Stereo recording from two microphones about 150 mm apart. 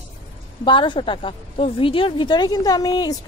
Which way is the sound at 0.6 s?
35° left (ahead or behind).